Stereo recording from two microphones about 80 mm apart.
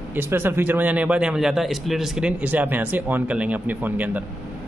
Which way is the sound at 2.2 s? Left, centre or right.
Centre.